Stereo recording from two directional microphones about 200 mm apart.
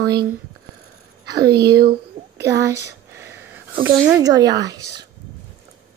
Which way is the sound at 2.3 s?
15° right (ahead or behind).